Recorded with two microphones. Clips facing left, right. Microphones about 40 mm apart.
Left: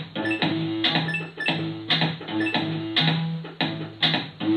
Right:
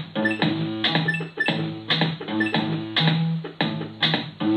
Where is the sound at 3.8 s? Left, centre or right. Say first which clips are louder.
Right 1 dB; centre.